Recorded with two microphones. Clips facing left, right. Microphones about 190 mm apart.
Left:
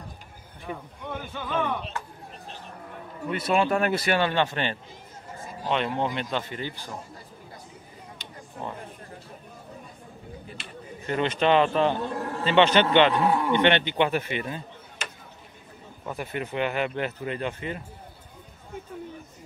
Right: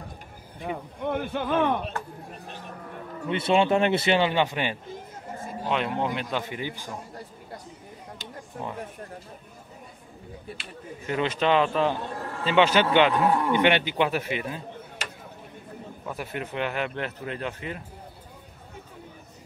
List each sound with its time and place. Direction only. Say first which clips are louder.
0.7 s speech: right 6 dB; 60° right (ahead or behind)
3.3 s a man's voice: right 2 dB; 25° right (ahead or behind)
10.6 s speech: even; 5° right (ahead or behind)
16.1 s speech: left 2 dB; centre (ahead or behind)